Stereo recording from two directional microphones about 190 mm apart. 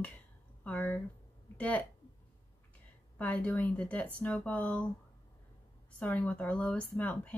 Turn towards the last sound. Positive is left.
turn(degrees=5)  # may be behind; listen again after turning